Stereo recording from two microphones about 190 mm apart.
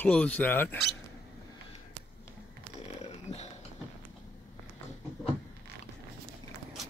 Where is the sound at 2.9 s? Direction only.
35° left (ahead or behind).